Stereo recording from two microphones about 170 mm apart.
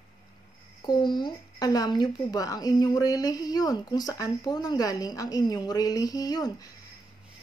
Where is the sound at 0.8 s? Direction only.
25° left (ahead or behind).